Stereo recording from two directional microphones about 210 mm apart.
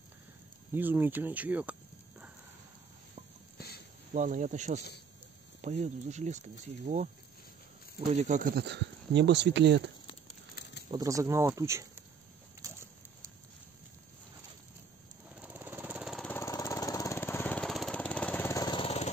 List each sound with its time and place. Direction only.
0.7 s speech: 10° right (ahead or behind)
3.5 s a sound: 50° left (ahead or behind)
4.1 s speech: 35° right (ahead or behind)
8.1 s speech: 35° right (ahead or behind); by 9.8 s 55° right (ahead or behind)
10.9 s speech: 15° right (ahead or behind)
12.6 s a sound: 15° right (ahead or behind)
15.3 s lawn mower: 10° right (ahead or behind)
16.3 s lawn mower: 15° left (ahead or behind)